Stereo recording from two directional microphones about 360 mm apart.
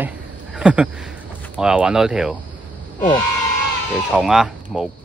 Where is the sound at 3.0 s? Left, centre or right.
Centre.